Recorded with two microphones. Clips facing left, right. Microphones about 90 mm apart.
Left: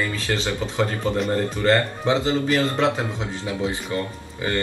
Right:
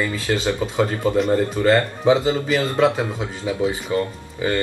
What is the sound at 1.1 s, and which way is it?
A man's voice, centre (ahead or behind).